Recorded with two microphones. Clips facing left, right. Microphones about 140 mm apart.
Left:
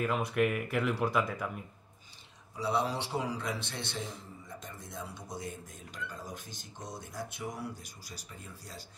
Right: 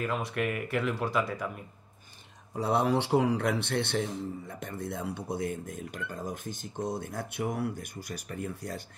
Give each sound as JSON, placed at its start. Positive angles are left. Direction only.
{"t": 0.0, "sound": "speech", "side_deg": 0}
{"t": 2.5, "sound": "a man's voice", "side_deg": -55}